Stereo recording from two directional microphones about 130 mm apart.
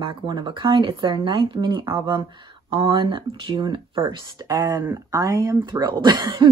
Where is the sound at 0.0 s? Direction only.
40° right (ahead or behind).